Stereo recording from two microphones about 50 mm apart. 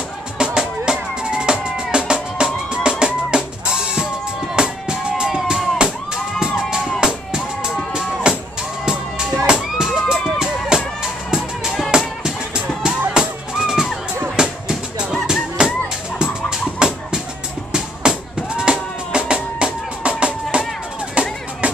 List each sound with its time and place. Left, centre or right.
0.4 s music: centre
7.0 s music: centre
16.2 s fowl: centre
18.0 s music: centre